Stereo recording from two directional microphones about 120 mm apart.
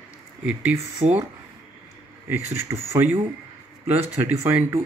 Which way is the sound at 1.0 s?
65° right (ahead or behind).